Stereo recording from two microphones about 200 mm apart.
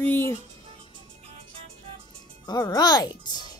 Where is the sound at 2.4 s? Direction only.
20° left (ahead or behind).